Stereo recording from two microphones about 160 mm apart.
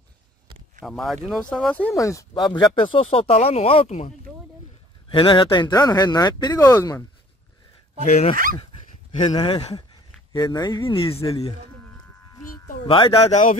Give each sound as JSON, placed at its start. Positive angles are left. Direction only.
{"t": 0.8, "sound": "speech", "side_deg": 0}
{"t": 2.0, "sound": "speech", "side_deg": 20}
{"t": 5.1, "sound": "speech", "side_deg": 30}
{"t": 8.0, "sound": "speech", "side_deg": 50}
{"t": 9.2, "sound": "speech", "side_deg": 30}
{"t": 10.3, "sound": "speech", "side_deg": 25}
{"t": 12.8, "sound": "speech", "side_deg": 35}